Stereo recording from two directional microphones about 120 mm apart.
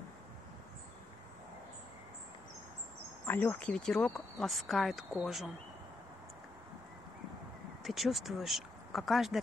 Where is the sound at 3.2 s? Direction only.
20° left (ahead or behind); by 5.4 s 5° right (ahead or behind).